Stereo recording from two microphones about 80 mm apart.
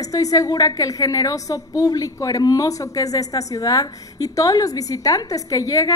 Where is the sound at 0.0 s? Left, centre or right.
Left.